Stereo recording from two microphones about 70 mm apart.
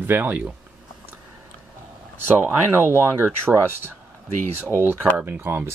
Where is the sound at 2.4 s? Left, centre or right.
Right.